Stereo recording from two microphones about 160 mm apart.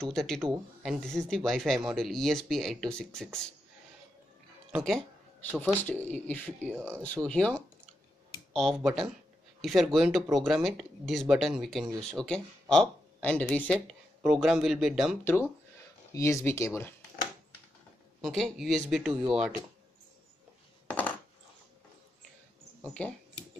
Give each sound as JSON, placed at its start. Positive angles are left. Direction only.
{"t": 0.0, "sound": "speech", "side_deg": 0}
{"t": 4.7, "sound": "speech", "side_deg": 0}
{"t": 6.7, "sound": "speech", "side_deg": -15}
{"t": 7.0, "sound": "speech", "side_deg": 10}
{"t": 16.2, "sound": "speech", "side_deg": 20}
{"t": 18.2, "sound": "speech", "side_deg": 0}
{"t": 20.8, "sound": "coin", "side_deg": 10}